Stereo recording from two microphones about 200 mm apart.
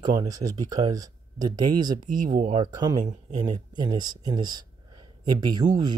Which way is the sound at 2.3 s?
40° right (ahead or behind).